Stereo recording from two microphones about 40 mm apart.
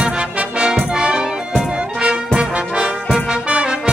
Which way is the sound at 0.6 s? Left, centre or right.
Right.